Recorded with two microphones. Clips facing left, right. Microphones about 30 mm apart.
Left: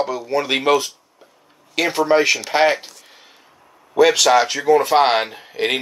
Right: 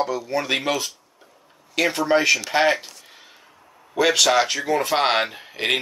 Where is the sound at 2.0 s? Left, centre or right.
Centre.